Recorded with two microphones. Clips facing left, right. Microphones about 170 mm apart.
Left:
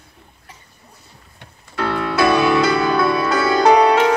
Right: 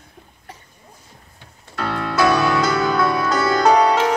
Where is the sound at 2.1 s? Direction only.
60° left (ahead or behind).